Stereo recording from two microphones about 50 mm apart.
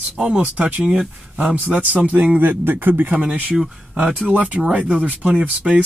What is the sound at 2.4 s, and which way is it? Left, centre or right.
Speech, right.